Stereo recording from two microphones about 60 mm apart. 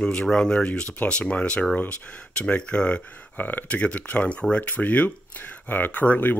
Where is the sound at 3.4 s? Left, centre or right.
Left.